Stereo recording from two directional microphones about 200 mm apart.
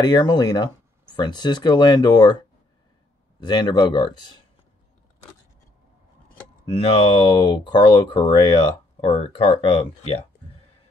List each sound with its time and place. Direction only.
0.0 s speech: 20° left (ahead or behind)
3.3 s speech: 20° left (ahead or behind)
6.6 s speech: 25° left (ahead or behind)